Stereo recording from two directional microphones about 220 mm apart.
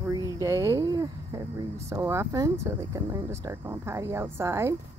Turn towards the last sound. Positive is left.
turn(degrees=-10)  # may be behind; listen again after turning